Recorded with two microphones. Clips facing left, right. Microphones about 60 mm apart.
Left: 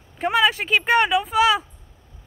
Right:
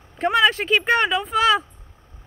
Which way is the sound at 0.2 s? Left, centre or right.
Centre.